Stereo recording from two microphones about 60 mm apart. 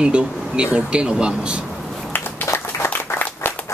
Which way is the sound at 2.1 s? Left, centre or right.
Left.